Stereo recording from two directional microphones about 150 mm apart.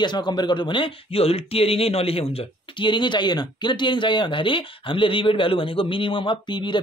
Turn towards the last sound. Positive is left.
turn(degrees=30)  # may be behind; listen again after turning